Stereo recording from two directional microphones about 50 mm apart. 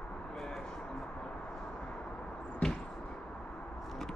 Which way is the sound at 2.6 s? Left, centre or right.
Left.